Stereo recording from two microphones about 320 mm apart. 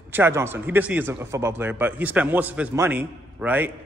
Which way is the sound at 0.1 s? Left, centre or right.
Centre.